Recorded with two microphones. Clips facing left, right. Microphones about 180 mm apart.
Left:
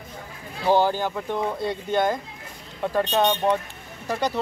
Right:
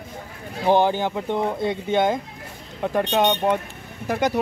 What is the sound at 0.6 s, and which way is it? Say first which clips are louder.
Speech: right 2 dB; 20° right (ahead or behind).